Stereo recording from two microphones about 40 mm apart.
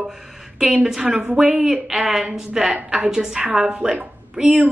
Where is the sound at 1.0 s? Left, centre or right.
Right.